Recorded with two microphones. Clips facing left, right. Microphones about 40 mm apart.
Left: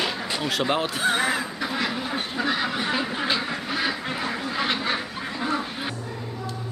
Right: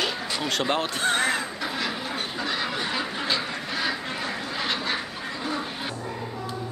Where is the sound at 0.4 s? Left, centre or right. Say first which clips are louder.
Left 1 dB; centre.